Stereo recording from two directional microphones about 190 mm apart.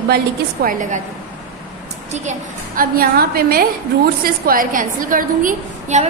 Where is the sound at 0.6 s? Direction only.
45° right (ahead or behind).